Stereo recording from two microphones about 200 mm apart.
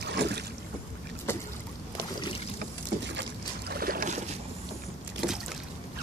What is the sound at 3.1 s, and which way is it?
Boat, 55° right (ahead or behind).